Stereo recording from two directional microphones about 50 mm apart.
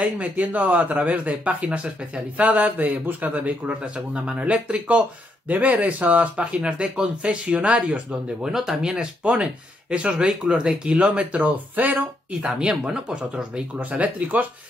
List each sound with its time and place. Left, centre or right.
0.0 s a man's voice: right
3.8 s a man's voice: centre
6.6 s speech: centre
12.4 s speech: centre; by 14.4 s right